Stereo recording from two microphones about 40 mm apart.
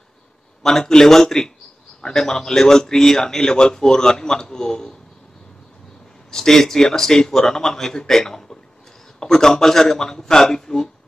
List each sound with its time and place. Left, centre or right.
0.6 s a man's voice: centre
6.3 s a man's voice: centre